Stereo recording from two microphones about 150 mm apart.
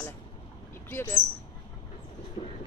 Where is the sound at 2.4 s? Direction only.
40° left (ahead or behind).